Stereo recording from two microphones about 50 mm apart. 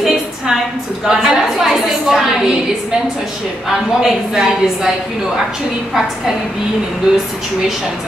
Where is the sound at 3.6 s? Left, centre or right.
Centre.